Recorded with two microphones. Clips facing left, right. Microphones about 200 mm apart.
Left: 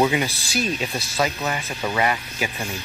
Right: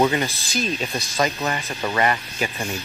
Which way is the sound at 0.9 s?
15° right (ahead or behind).